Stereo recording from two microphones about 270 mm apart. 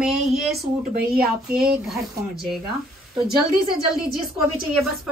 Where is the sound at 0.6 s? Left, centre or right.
Right.